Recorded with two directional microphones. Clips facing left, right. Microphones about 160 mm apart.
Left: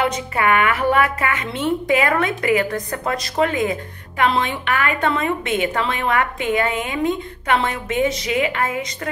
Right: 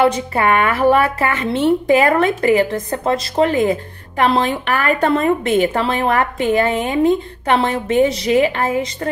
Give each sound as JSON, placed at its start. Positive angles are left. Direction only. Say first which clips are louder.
{"t": 0.0, "sound": "a woman's voice", "louder": "right 5 dB", "side_deg": -30}